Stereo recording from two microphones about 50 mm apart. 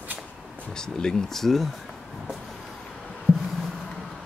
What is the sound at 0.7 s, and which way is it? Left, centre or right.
Speech, centre.